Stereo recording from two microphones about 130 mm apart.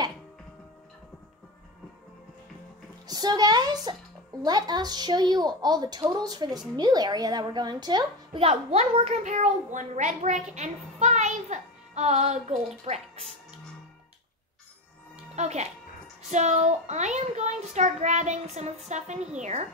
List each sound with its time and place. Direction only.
3.1 s a woman's voice: 30° right (ahead or behind)
8.4 s a child's voice: 50° right (ahead or behind)
9.2 s a child's voice: 70° right (ahead or behind)
15.3 s a child's voice: 60° right (ahead or behind)